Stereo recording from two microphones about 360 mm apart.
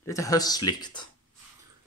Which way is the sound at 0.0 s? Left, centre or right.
Centre.